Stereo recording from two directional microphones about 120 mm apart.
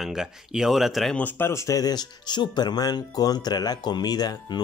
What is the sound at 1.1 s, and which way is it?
Speech, 15° left (ahead or behind).